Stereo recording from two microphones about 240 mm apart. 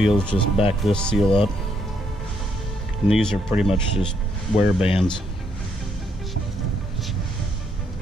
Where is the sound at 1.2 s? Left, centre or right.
Left.